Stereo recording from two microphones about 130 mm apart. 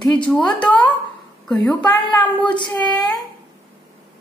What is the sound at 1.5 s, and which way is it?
Speech, 10° left (ahead or behind).